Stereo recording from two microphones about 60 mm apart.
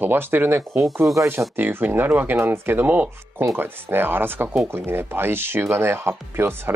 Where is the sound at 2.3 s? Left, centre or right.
Right.